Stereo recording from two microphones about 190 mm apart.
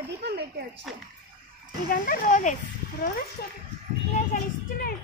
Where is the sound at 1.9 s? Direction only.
45° left (ahead or behind).